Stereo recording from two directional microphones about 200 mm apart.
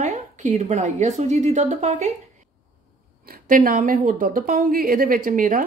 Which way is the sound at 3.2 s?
45° right (ahead or behind).